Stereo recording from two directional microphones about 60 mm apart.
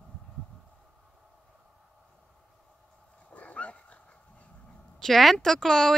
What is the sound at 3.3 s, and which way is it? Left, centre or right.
Dog, left.